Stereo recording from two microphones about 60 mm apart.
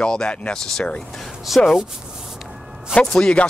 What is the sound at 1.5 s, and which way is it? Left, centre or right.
Speech, centre.